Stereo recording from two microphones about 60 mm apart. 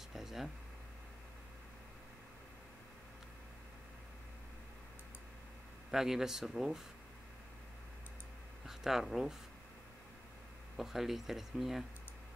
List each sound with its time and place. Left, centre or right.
0.1 s a sound: centre
5.9 s speech: centre
8.6 s speech: centre
10.8 s speech: centre